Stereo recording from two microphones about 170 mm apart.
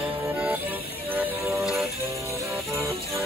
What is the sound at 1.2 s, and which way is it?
Music, 15° right (ahead or behind).